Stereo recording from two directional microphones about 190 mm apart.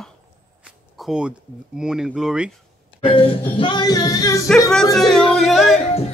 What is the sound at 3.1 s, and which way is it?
Music, 30° left (ahead or behind).